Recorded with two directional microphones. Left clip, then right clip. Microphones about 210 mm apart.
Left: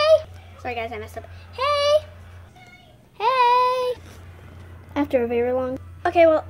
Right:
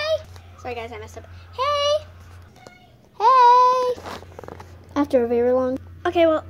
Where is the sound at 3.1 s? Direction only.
10° right (ahead or behind).